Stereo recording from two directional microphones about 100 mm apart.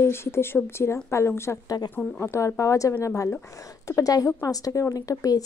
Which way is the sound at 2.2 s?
25° left (ahead or behind).